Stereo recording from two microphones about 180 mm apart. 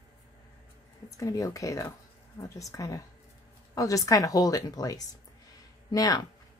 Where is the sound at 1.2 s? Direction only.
20° left (ahead or behind).